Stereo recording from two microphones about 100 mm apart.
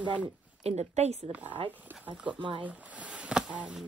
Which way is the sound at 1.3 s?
15° right (ahead or behind).